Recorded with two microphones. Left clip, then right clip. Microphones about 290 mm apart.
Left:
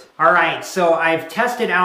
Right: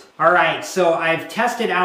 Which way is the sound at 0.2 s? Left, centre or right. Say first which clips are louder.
Left 1 dB; centre.